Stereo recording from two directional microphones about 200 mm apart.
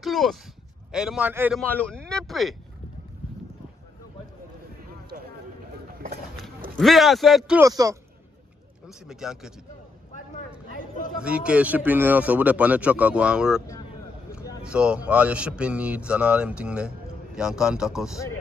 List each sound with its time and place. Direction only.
0.0 s a man's voice: centre (ahead or behind)
1.6 s a man's voice: 5° left (ahead or behind)
5.1 s run: 45° right (ahead or behind)
6.8 s a man's voice: centre (ahead or behind)
7.6 s speech: 15° right (ahead or behind)
8.8 s a man's voice: centre (ahead or behind)
11.2 s speech: 5° right (ahead or behind)
14.6 s a man's voice: 5° right (ahead or behind)